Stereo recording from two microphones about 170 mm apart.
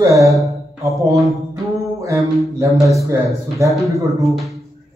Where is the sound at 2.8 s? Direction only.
20° right (ahead or behind).